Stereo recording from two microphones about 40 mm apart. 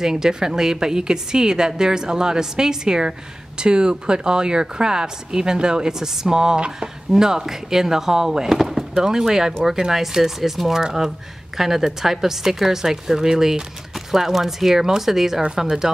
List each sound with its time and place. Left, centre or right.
0.0 s a woman's voice: centre
15.4 s speech: right